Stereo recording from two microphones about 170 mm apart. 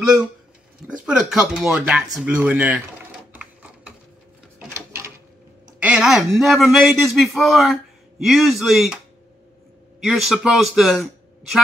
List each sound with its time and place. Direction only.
0.0 s a man's voice: 5° right (ahead or behind)
4.7 s a sound: 15° right (ahead or behind)
5.8 s a man's voice: 5° right (ahead or behind)
10.0 s a man's voice: centre (ahead or behind)